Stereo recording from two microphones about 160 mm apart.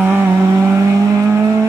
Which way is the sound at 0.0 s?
15° right (ahead or behind).